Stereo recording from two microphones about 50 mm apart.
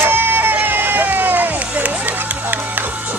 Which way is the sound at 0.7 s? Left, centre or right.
Right.